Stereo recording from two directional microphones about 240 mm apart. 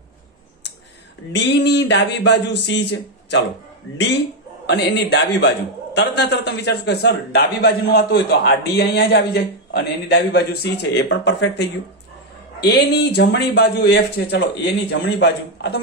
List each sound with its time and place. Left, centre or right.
1.3 s a man's voice: left
4.6 s a man's voice: left